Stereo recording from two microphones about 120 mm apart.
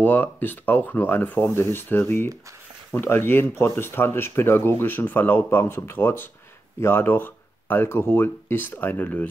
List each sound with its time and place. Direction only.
0.0 s speech: 15° left (ahead or behind)